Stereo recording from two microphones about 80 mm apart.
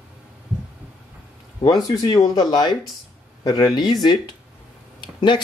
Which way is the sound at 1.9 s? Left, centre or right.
Left.